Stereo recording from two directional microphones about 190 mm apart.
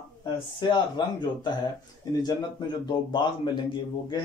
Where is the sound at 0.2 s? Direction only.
25° left (ahead or behind).